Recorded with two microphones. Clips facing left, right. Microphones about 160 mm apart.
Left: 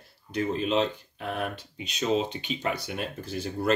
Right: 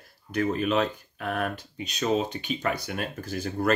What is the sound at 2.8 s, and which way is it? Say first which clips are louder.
Speech: right 1 dB; 25° left (ahead or behind).